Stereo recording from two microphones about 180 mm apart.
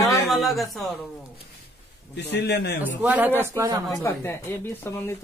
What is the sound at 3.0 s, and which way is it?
Speech, 10° right (ahead or behind).